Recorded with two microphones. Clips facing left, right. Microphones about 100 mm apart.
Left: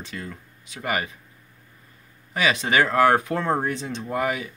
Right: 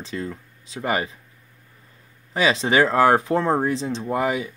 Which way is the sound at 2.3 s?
30° right (ahead or behind).